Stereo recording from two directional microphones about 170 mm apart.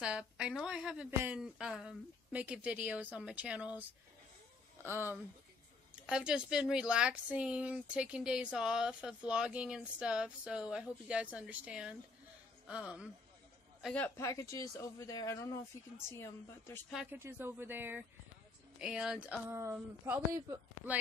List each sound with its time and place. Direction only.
0.0 s speech: 5° right (ahead or behind)
4.8 s speech: 15° right (ahead or behind)
13.8 s speech: 10° left (ahead or behind)
16.9 s speech: 10° right (ahead or behind)